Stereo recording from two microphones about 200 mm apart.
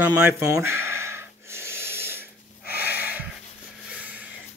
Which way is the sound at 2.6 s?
50° left (ahead or behind).